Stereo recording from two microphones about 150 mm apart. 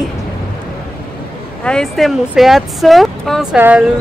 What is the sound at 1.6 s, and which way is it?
Speech, 5° left (ahead or behind).